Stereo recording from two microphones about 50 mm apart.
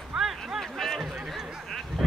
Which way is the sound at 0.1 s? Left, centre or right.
Centre.